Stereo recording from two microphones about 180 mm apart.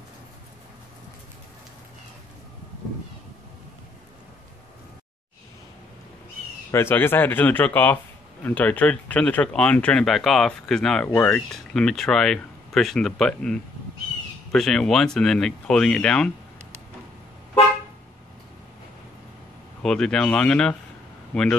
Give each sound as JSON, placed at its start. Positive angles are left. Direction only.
{"t": 6.7, "sound": "speech", "side_deg": 10}
{"t": 19.8, "sound": "speech", "side_deg": 5}